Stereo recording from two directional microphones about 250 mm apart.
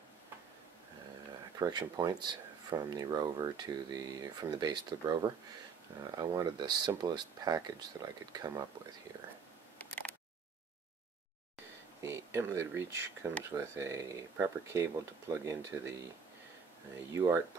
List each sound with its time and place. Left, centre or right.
1.6 s speech: centre
9.8 s single-lens reflex camera: centre
12.0 s speech: centre
17.1 s speech: centre